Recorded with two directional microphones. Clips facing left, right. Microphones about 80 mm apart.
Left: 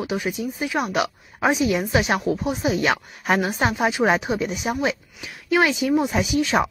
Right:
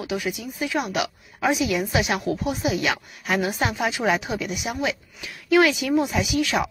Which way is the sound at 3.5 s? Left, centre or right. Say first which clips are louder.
Left 3 dB; left.